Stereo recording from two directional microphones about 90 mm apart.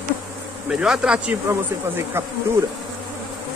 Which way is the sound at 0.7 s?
10° right (ahead or behind).